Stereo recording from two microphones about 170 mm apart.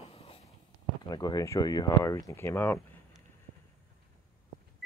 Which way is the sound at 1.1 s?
20° left (ahead or behind).